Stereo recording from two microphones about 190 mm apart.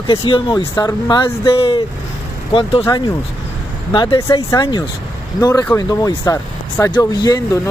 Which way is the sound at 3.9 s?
25° left (ahead or behind).